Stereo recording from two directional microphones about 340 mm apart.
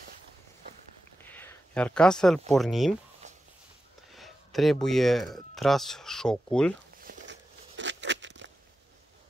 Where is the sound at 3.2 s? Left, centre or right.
Right.